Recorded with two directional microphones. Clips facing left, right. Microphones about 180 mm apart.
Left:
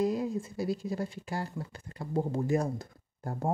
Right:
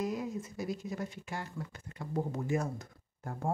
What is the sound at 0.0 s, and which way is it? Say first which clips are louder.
Speech: left 6 dB; 30° left (ahead or behind).